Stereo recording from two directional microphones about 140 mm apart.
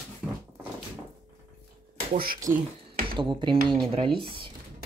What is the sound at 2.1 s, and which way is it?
Speech, 90° right.